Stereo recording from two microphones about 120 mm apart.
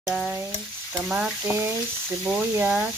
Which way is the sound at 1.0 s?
10° right (ahead or behind).